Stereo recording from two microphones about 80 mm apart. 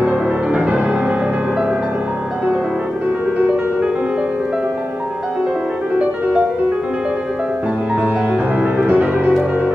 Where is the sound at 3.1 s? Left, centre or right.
Centre.